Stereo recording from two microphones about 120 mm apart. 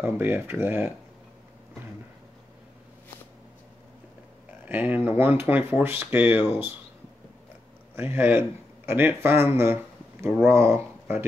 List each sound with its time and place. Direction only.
0.0 s speech: 15° right (ahead or behind)
4.6 s speech: 15° right (ahead or behind)
7.9 s speech: 20° right (ahead or behind)